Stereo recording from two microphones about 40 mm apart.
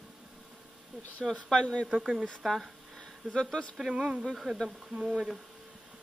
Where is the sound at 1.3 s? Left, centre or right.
Left.